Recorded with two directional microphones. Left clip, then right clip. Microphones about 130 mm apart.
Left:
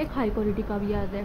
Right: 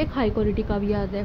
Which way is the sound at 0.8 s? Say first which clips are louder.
Right 4 dB; 65° right (ahead or behind).